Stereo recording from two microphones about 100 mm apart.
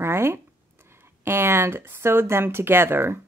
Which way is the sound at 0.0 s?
25° right (ahead or behind).